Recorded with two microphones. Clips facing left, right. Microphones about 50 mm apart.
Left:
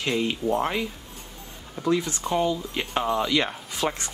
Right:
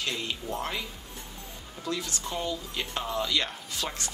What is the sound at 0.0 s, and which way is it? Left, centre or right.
Speech, left.